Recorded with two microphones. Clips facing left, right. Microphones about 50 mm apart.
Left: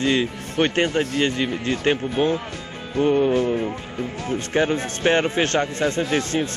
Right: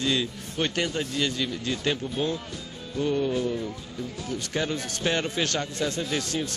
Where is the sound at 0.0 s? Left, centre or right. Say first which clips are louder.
Left 6 dB; left.